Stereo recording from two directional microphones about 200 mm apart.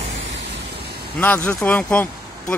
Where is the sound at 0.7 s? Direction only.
55° right (ahead or behind).